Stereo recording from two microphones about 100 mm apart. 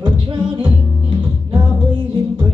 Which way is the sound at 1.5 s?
45° right (ahead or behind).